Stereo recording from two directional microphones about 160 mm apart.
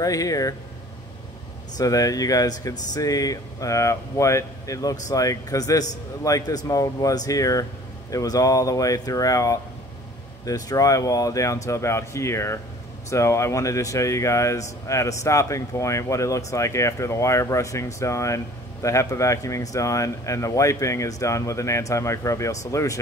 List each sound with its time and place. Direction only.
0.0 s speech: 20° left (ahead or behind)
1.8 s speech: 20° left (ahead or behind)